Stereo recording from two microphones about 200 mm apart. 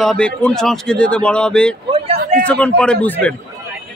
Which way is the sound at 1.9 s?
25° right (ahead or behind).